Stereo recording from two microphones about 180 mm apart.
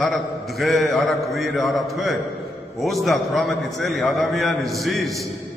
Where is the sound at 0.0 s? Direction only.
Centre (ahead or behind).